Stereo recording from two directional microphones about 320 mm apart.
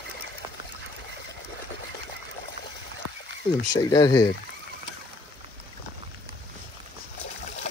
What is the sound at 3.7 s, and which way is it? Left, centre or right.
Speech, centre.